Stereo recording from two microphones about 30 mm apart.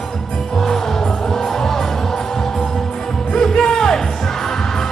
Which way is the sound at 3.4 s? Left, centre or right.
Centre.